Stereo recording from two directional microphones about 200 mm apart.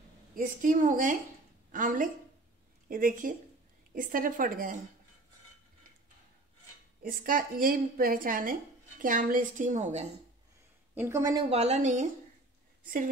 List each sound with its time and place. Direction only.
0.4 s a woman's voice: 40° right (ahead or behind)
7.0 s a woman's voice: 45° right (ahead or behind)
11.0 s a woman's voice: 15° right (ahead or behind)
11.5 s a woman's voice: 35° right (ahead or behind)